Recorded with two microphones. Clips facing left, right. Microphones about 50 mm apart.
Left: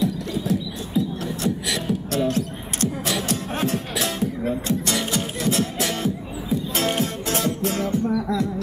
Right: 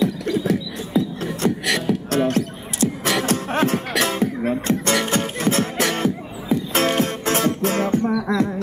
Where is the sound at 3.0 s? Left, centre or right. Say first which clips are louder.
Right 4 dB; right.